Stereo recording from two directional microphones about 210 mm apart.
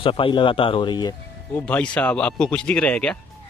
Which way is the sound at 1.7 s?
5° left (ahead or behind).